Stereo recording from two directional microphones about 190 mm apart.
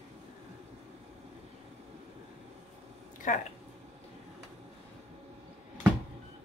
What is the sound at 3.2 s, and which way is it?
Speech, 40° left (ahead or behind).